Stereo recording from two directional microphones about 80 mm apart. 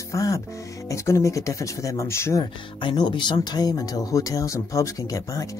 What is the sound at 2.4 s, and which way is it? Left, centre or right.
Speech, left.